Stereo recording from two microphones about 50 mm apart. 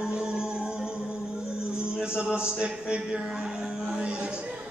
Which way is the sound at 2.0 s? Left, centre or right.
Centre.